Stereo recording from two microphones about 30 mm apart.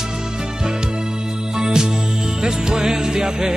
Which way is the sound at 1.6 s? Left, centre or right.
Right.